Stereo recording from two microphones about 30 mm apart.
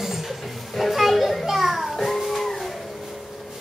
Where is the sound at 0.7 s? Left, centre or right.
Centre.